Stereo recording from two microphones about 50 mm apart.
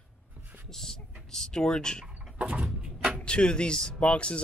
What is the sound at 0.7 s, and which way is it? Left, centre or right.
Speech, centre.